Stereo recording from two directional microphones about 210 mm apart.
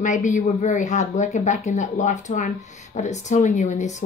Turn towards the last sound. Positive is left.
turn(degrees=35)  # may be behind; listen again after turning